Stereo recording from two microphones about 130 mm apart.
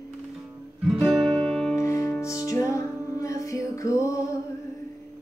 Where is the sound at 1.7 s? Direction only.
20° left (ahead or behind).